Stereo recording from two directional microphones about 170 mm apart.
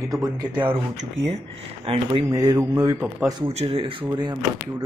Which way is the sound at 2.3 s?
25° right (ahead or behind).